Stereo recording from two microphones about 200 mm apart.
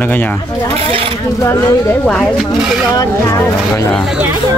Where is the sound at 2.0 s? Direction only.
5° left (ahead or behind).